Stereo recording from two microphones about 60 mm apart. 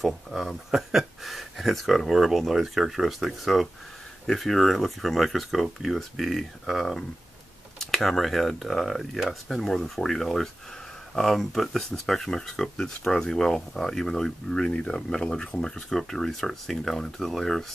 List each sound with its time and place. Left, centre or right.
0.0 s speech: centre